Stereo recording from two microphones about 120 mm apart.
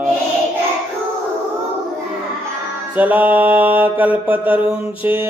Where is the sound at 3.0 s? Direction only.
15° right (ahead or behind).